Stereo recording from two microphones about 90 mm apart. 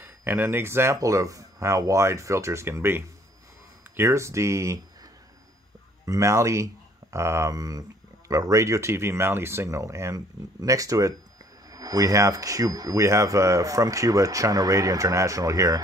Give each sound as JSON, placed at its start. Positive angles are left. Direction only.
{"t": 0.0, "sound": "speech", "side_deg": -25}
{"t": 6.0, "sound": "speech", "side_deg": -35}